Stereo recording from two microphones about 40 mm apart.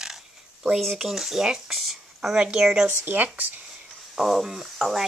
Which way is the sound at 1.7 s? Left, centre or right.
Centre.